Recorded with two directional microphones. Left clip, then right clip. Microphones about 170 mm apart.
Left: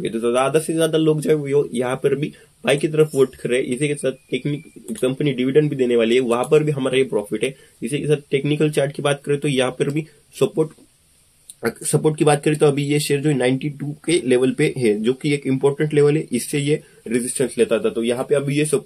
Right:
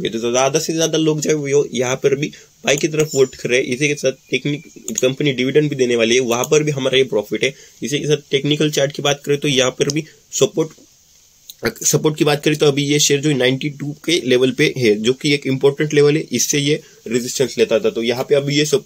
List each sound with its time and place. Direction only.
0.0 s speech: 25° right (ahead or behind)